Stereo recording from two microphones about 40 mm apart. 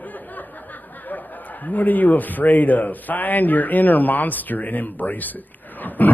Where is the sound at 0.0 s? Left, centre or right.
Left.